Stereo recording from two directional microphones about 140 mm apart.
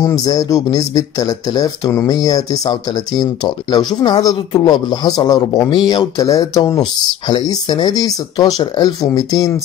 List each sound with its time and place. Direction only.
0.0 s speech: 25° left (ahead or behind)